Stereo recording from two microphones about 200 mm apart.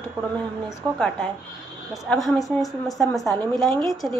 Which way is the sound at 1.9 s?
Centre (ahead or behind).